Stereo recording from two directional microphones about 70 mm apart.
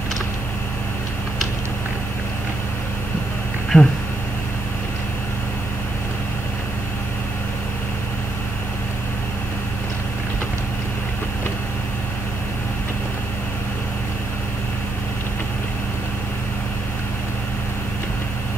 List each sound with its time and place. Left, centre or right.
3.7 s speech: left